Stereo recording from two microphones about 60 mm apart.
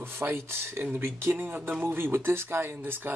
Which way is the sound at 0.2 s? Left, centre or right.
Right.